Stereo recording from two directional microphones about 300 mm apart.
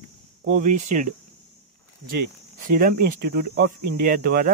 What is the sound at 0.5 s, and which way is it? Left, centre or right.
Speech, right.